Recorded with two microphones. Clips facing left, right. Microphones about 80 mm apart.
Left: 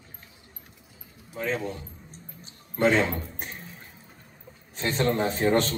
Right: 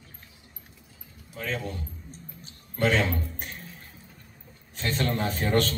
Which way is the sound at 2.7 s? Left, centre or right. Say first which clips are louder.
Left 2 dB; left.